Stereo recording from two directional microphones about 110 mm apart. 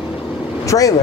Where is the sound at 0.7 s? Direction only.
40° left (ahead or behind).